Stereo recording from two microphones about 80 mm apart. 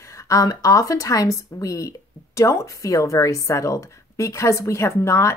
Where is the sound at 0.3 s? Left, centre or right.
Left.